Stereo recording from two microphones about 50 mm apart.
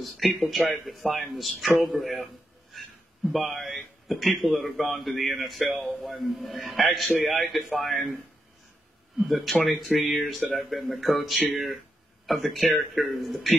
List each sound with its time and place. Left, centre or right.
0.0 s a man's voice: centre
9.2 s a man's voice: centre